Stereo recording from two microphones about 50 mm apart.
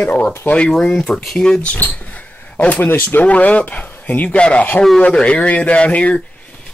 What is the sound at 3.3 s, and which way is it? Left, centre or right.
Speech, left.